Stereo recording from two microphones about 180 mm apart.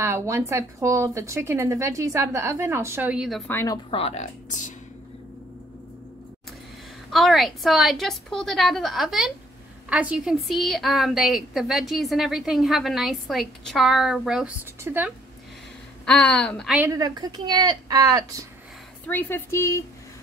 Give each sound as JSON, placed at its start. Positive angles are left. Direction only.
{"t": 0.0, "sound": "speech", "side_deg": -15}
{"t": 3.5, "sound": "a woman's voice", "side_deg": 20}
{"t": 3.9, "sound": "speech", "side_deg": 35}
{"t": 7.1, "sound": "a woman's voice", "side_deg": 0}
{"t": 16.1, "sound": "speech", "side_deg": 5}
{"t": 16.7, "sound": "speech", "side_deg": -15}
{"t": 19.0, "sound": "speech", "side_deg": 10}